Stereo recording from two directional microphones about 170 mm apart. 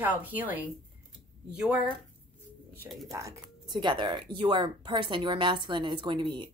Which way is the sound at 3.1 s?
20° right (ahead or behind).